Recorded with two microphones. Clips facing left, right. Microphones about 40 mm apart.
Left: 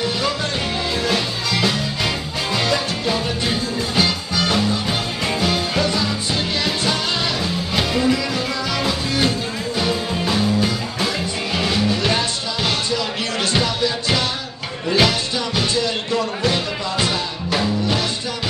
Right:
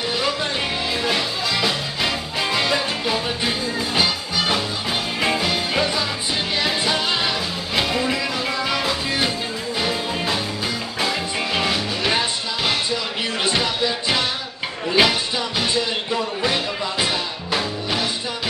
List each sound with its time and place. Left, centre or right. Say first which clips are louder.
1.0 s music: left 1 dB; centre